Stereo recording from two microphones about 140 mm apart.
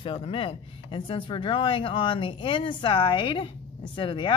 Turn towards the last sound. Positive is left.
turn(degrees=35)  # may be behind; listen again after turning